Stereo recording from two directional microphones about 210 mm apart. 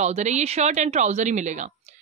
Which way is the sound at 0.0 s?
35° right (ahead or behind).